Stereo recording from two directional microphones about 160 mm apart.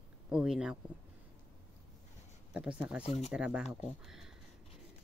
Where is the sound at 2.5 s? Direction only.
5° right (ahead or behind).